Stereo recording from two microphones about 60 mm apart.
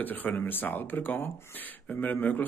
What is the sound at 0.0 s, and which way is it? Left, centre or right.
Speech, left.